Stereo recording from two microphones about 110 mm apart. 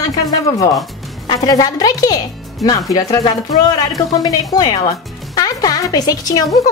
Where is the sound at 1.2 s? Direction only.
40° left (ahead or behind).